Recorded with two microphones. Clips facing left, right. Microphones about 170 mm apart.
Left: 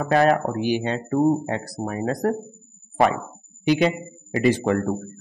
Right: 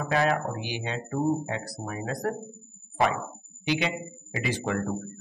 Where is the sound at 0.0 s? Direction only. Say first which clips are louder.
Left 7 dB; 50° left (ahead or behind).